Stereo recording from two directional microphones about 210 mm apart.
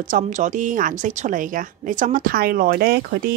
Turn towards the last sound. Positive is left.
turn(degrees=-45)  # may be behind; listen again after turning